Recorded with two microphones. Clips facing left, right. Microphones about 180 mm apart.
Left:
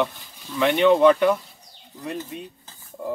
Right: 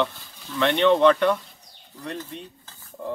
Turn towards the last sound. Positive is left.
turn(degrees=10)  # may be behind; listen again after turning